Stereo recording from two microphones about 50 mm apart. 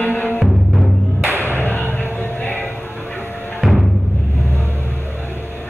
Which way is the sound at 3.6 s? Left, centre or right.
Centre.